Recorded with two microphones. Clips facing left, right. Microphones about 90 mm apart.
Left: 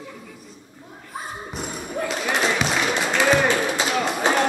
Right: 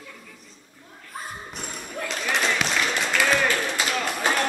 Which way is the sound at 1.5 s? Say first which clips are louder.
Left 5 dB; 5° left (ahead or behind).